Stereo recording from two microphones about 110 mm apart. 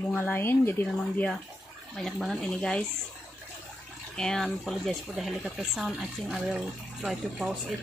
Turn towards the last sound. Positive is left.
turn(degrees=-5)  # may be behind; listen again after turning